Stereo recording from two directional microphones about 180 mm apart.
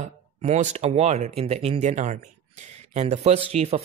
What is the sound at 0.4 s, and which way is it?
Speech, 40° right (ahead or behind).